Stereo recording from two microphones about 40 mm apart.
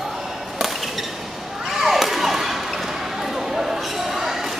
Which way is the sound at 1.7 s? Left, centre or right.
Centre.